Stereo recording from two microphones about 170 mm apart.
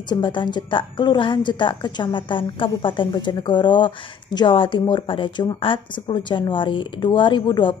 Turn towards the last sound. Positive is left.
turn(degrees=25)  # may be behind; listen again after turning